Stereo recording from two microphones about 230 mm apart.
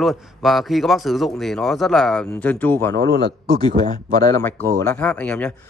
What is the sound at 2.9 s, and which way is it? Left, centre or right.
Speech, right.